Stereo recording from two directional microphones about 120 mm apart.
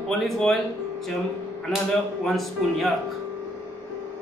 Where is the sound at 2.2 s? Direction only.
Centre (ahead or behind).